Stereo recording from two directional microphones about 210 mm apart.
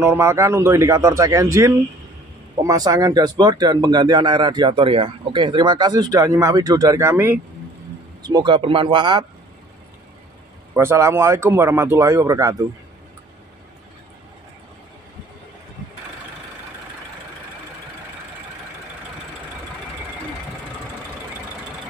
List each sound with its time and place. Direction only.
0.0 s speech: 10° right (ahead or behind)
10.7 s speech: 10° right (ahead or behind)